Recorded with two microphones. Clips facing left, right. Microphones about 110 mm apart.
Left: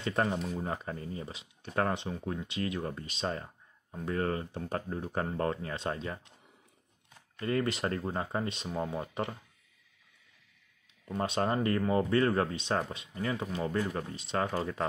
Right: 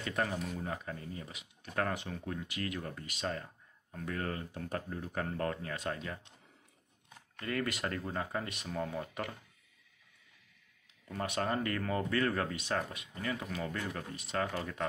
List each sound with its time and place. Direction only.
0.0 s speech: 30° left (ahead or behind)
7.3 s speech: 30° left (ahead or behind)
11.1 s speech: 25° left (ahead or behind)